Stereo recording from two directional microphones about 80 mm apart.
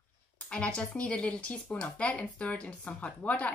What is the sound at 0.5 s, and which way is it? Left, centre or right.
Speech, centre.